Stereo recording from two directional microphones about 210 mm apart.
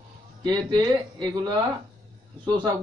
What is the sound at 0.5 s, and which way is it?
Speech, 20° right (ahead or behind).